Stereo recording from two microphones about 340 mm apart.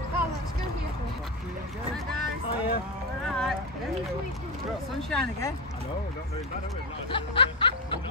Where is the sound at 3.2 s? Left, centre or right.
Centre.